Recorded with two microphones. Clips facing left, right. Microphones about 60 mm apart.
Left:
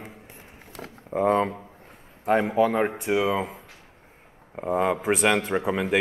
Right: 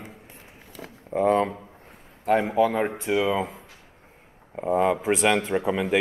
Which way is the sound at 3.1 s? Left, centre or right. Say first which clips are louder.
Right 1 dB; centre.